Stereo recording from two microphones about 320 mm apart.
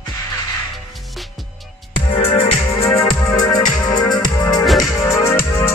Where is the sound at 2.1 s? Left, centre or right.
Centre.